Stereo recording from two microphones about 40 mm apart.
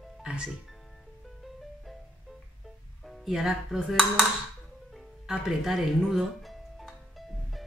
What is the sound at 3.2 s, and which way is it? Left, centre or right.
Speech, centre.